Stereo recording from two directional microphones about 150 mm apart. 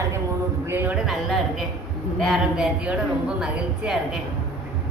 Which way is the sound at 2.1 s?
Centre (ahead or behind).